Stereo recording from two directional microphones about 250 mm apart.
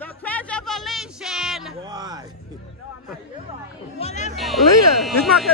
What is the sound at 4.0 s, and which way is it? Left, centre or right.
Music, left.